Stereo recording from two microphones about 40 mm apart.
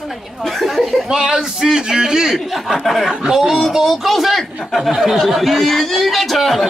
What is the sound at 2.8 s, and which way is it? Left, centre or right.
Speech, centre.